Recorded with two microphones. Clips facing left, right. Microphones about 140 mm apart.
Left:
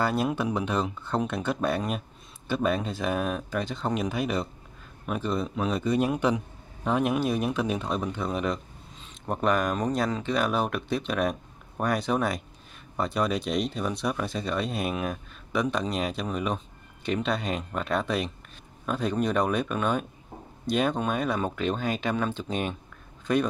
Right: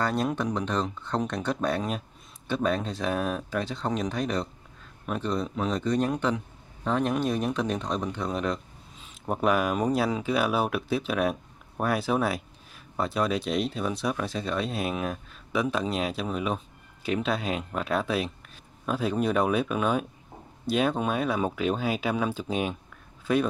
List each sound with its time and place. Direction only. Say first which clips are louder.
0.0 s speech: left 1 dB; 5° left (ahead or behind)